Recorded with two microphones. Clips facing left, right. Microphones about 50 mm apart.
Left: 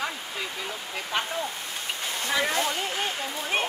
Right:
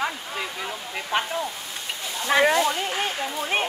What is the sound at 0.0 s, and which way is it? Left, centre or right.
Waterfall, centre.